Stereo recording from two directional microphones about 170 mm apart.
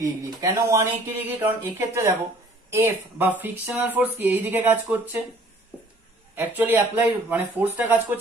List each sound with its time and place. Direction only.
0.0 s speech: 20° right (ahead or behind)
6.3 s speech: 10° right (ahead or behind)